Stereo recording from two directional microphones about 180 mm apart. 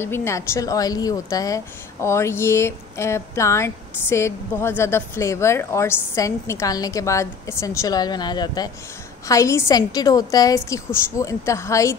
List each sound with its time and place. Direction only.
0.0 s a woman's voice: 15° left (ahead or behind)